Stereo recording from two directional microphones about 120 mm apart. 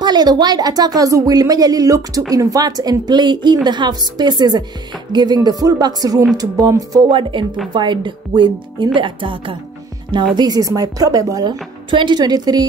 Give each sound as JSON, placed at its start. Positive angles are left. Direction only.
{"t": 0.0, "sound": "speech", "side_deg": -35}
{"t": 7.1, "sound": "speech", "side_deg": -45}
{"t": 10.3, "sound": "speech", "side_deg": -35}